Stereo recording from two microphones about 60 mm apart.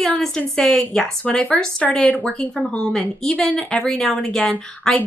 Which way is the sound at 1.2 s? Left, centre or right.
Left.